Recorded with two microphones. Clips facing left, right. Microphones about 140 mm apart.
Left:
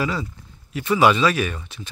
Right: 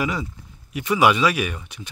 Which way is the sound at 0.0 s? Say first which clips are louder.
Even; 15° right (ahead or behind).